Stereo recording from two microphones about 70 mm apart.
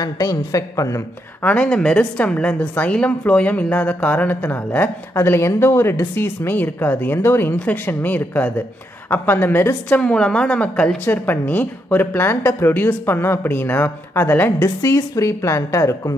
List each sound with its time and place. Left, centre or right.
0.0 s a woman's voice: left
1.4 s speech: left
11.1 s a woman's voice: left
14.8 s a woman's voice: left